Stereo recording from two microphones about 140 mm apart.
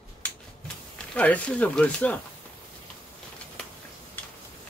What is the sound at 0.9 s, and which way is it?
Speech, 10° left (ahead or behind).